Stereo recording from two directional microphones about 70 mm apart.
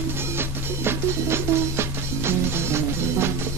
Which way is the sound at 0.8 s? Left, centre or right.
Right.